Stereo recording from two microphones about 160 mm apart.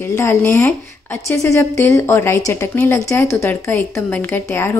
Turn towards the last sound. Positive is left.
turn(degrees=15)  # may be behind; listen again after turning